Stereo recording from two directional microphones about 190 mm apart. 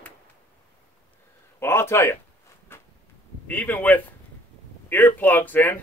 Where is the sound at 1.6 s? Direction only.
15° left (ahead or behind).